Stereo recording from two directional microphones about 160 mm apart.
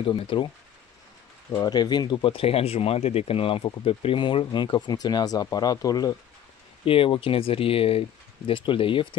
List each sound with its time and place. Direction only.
0.0 s speech: 30° left (ahead or behind)
1.5 s speech: 25° left (ahead or behind)
6.8 s speech: 35° left (ahead or behind)